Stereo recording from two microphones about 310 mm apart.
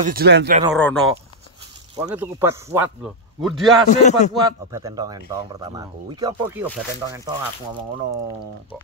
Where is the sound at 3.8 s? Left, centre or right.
Left.